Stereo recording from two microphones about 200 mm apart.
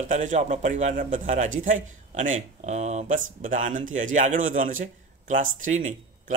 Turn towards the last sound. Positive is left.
turn(degrees=-40)  # may be behind; listen again after turning